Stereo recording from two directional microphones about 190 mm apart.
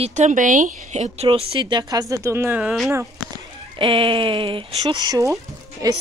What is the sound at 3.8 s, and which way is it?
Speech, 25° right (ahead or behind).